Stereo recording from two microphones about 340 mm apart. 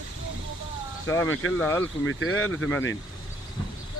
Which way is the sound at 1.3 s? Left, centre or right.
Left.